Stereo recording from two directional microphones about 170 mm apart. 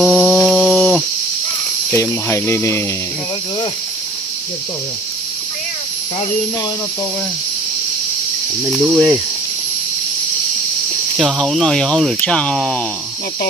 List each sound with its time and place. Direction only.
0.0 s a sound: centre (ahead or behind)
1.9 s speech: 10° left (ahead or behind)
8.6 s speech: centre (ahead or behind)
11.1 s speech: 5° left (ahead or behind)